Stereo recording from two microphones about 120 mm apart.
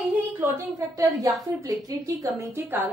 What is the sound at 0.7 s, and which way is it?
A woman's voice, 30° right (ahead or behind).